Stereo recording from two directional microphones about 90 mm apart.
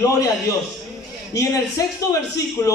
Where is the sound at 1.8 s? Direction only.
40° left (ahead or behind).